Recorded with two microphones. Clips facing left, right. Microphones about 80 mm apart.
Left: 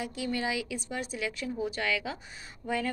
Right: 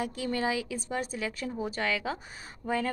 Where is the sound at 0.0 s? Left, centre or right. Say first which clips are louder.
Right 2 dB; right.